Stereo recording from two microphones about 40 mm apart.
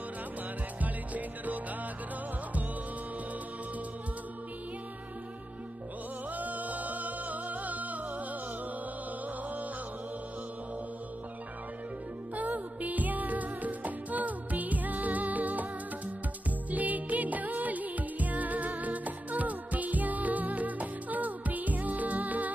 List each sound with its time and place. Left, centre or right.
0.7 s music: right
6.3 s music: right
12.4 s music: right